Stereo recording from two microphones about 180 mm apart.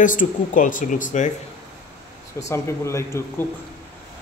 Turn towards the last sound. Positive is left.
turn(degrees=15)  # may be behind; listen again after turning